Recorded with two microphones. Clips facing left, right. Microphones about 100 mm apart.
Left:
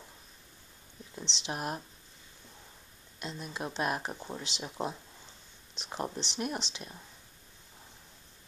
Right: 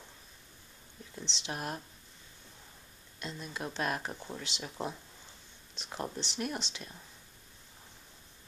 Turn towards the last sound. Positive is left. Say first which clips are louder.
# left 1 dB
turn(degrees=20)  # may be behind; listen again after turning